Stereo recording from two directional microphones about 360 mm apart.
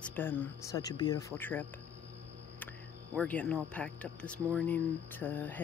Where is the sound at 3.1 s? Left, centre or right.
Centre.